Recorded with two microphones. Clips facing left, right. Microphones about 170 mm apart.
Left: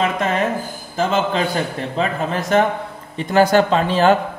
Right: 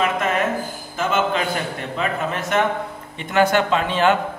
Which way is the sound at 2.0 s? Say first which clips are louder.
Left 3 dB; 35° left (ahead or behind).